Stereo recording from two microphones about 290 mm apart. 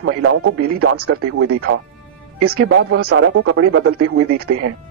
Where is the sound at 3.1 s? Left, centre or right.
Right.